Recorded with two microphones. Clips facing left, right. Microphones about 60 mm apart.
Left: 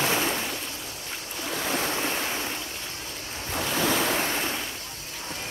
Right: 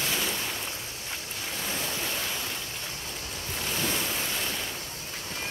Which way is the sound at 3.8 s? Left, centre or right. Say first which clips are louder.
Left 8 dB; left.